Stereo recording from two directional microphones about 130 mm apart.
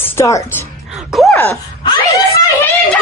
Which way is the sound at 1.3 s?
20° left (ahead or behind).